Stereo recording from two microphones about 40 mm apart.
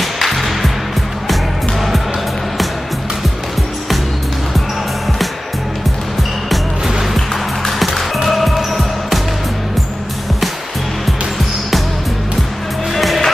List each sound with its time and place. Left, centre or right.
0.0 s music: centre
6.5 s music: centre
7.2 s music: centre
8.3 s basketball bounce: centre
12.9 s skateboard: centre